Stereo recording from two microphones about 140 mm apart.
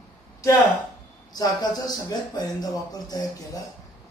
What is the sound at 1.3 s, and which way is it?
Speech, 30° left (ahead or behind).